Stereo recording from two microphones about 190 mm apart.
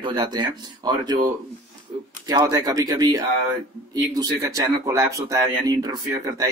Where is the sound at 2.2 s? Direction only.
20° right (ahead or behind).